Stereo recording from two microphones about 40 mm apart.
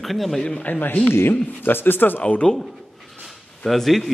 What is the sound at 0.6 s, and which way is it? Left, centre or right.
Speech, left.